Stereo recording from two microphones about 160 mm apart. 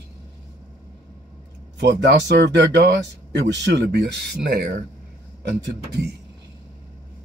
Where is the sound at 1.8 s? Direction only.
90° right.